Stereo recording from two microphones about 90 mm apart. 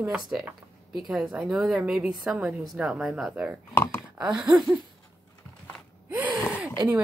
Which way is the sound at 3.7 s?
25° left (ahead or behind).